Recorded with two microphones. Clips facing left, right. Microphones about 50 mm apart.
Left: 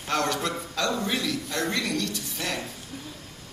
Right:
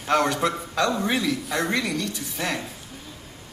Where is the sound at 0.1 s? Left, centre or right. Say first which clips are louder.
Right 5 dB; centre.